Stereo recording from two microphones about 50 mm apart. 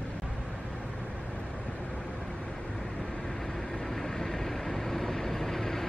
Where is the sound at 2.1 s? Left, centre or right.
Centre.